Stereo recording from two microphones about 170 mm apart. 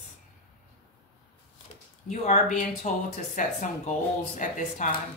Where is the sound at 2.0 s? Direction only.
45° left (ahead or behind).